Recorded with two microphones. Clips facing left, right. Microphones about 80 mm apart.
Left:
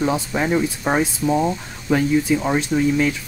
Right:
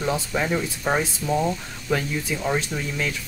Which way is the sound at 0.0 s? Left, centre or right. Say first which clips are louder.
Left 4 dB; left.